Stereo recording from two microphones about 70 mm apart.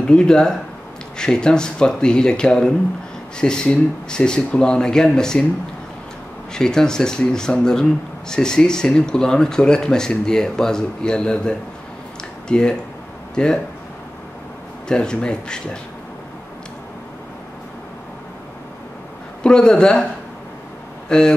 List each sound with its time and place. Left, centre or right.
0.0 s speech: centre
6.5 s speech: centre
14.9 s speech: centre
19.4 s speech: centre
21.1 s speech: centre